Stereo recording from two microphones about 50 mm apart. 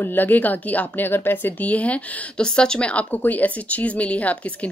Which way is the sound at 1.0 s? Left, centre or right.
Left.